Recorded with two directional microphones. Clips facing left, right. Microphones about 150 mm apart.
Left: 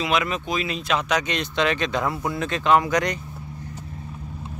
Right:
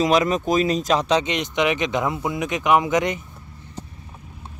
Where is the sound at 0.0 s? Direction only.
40° right (ahead or behind); by 3.2 s 20° right (ahead or behind).